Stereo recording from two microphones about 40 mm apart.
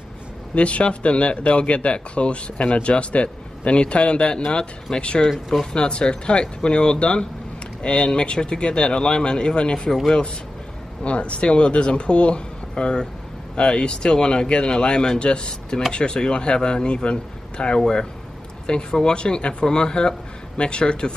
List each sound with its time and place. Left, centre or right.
0.6 s speech: left
11.1 s speech: left